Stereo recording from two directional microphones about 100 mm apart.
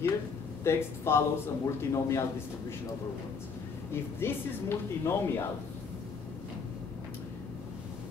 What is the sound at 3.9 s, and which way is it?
Speech, 25° left (ahead or behind).